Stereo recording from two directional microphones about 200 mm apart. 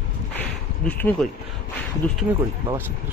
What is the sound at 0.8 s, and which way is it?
Speech, 5° left (ahead or behind).